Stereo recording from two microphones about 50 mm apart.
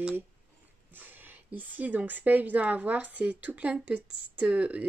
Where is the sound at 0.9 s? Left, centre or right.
Right.